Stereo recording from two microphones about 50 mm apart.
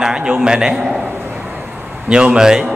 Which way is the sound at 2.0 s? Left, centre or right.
Centre.